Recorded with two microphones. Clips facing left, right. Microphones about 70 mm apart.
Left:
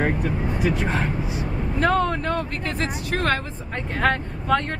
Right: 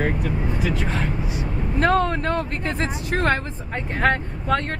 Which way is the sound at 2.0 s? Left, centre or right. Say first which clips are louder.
Right 1 dB; right.